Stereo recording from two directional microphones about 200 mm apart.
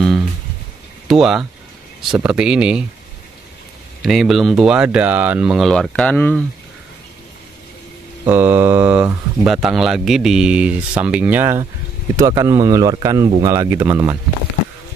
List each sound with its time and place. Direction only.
1.0 s speech: centre (ahead or behind)
4.0 s speech: centre (ahead or behind)
8.3 s speech: 10° right (ahead or behind)